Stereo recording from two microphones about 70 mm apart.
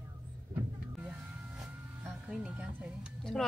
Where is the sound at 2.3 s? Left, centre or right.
Centre.